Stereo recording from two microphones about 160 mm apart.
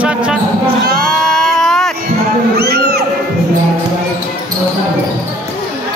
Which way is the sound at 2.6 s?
80° right.